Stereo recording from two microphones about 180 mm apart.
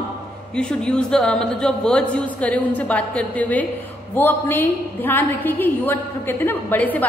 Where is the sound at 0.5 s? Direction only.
5° left (ahead or behind).